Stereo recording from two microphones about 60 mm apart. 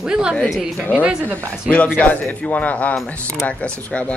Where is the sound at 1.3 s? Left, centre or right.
Centre.